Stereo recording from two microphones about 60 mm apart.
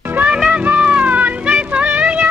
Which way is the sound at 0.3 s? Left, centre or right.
Centre.